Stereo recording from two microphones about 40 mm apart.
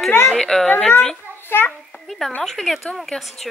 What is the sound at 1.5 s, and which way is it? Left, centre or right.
Speech, left.